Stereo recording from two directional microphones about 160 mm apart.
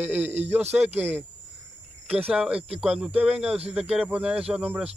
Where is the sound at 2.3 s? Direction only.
5° right (ahead or behind).